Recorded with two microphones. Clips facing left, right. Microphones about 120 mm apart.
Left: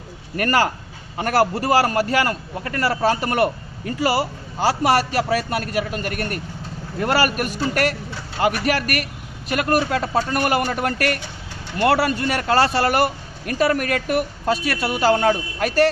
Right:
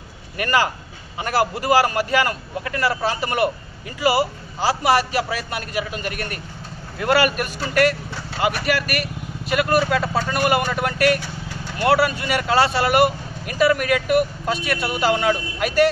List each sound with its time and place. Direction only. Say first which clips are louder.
0.4 s a man's voice: left 1 dB; 40° left (ahead or behind)